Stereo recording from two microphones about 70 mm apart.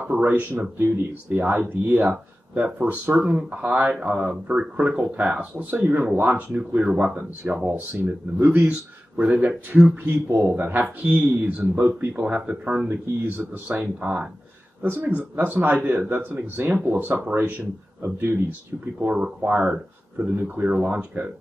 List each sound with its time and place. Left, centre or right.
0.1 s speech: right
18.9 s speech: centre